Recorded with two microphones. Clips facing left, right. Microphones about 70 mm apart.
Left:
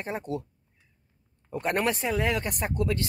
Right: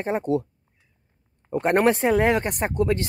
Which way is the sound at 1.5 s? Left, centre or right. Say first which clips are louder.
Right 8 dB; right.